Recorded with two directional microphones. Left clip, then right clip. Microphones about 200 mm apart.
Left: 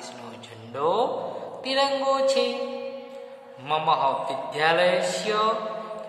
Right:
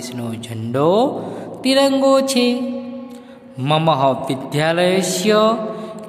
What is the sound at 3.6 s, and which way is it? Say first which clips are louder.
A man's voice: right 7 dB; 55° right (ahead or behind).